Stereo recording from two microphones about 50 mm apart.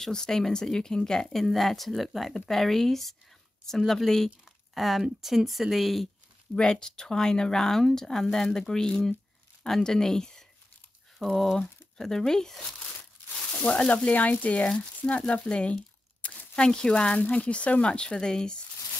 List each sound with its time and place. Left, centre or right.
0.0 s speech: centre
4.7 s speech: centre
6.5 s speech: centre
11.1 s speech: centre
13.5 s speech: left
15.4 s a sound: centre
16.5 s speech: centre